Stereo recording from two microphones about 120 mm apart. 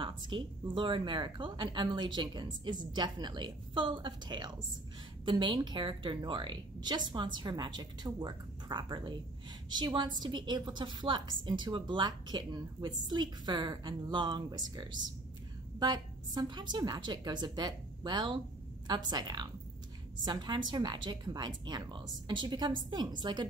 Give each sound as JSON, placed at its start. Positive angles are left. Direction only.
{"t": 0.0, "sound": "a woman's voice", "side_deg": -40}